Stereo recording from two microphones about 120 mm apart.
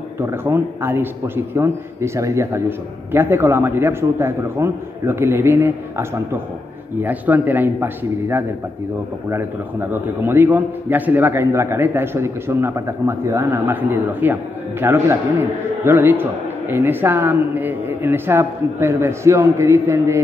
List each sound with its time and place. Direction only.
0.2 s a man's voice: 20° right (ahead or behind)